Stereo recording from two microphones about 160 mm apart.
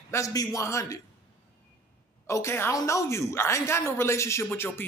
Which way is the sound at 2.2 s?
15° left (ahead or behind).